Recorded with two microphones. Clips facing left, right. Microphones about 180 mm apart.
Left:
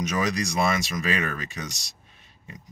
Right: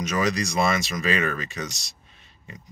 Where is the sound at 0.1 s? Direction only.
10° left (ahead or behind).